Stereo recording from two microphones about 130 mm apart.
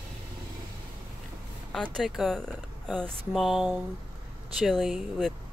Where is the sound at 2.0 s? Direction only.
Centre (ahead or behind).